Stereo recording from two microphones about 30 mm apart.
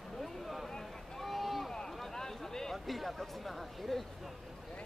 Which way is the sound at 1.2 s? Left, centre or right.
Centre.